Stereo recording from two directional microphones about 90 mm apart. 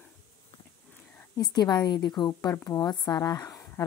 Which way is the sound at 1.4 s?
50° left (ahead or behind).